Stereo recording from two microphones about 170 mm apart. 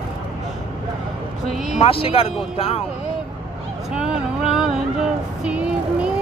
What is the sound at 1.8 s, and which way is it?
Speech, 35° left (ahead or behind).